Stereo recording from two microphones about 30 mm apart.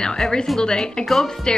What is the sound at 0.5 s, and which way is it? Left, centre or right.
Speech, left.